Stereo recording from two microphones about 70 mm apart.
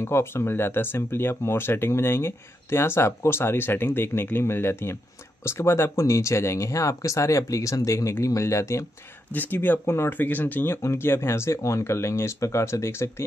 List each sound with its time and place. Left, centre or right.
0.0 s speech: left
9.3 s speech: left